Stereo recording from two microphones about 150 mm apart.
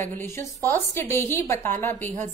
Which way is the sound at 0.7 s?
15° left (ahead or behind).